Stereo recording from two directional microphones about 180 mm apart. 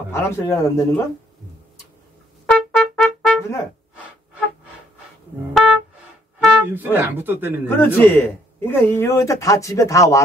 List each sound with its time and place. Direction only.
0.1 s speech: 15° left (ahead or behind)
2.4 s trumpet: centre (ahead or behind)
4.0 s gasp: 10° right (ahead or behind)
6.4 s speech: 5° right (ahead or behind)
7.6 s speech: 10° left (ahead or behind)